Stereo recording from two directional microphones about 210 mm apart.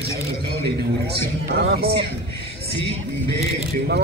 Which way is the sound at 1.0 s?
50° right (ahead or behind).